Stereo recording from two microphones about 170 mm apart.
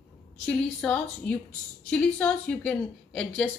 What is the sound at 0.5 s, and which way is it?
A woman's voice, 10° left (ahead or behind).